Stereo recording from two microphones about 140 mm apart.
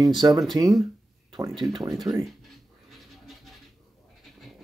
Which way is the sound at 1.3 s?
30° right (ahead or behind).